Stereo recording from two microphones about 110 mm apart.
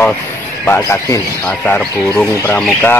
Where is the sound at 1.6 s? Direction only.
10° left (ahead or behind).